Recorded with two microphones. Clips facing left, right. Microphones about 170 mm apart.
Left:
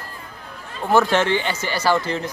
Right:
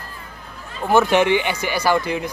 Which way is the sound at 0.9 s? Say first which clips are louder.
Right 2 dB; 15° right (ahead or behind).